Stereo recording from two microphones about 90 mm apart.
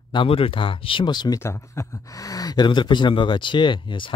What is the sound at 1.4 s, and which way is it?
Speech, 30° left (ahead or behind).